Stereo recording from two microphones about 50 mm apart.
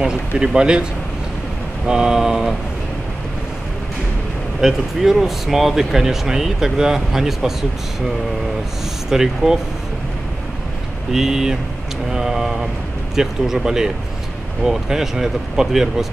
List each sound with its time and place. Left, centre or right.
0.5 s speech: centre
1.9 s speech: centre
4.6 s speech: centre
9.1 s speech: centre
11.1 s speech: centre